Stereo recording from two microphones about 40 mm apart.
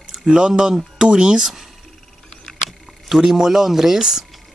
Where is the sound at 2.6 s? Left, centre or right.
Centre.